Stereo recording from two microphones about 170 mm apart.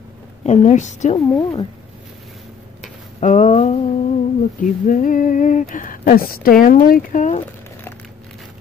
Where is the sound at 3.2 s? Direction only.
45° left (ahead or behind).